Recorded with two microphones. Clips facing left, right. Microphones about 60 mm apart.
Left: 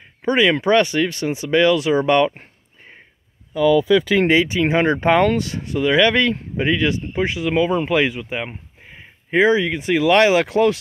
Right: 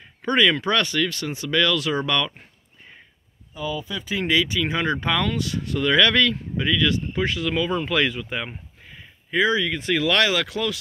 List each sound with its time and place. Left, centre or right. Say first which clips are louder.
0.2 s speech: left 3 dB; centre
3.5 s speech: left 15 dB; left
4.3 s speech: left 6 dB; left
5.7 s speech: left 3 dB; centre
6.3 s speech: left 4 dB; left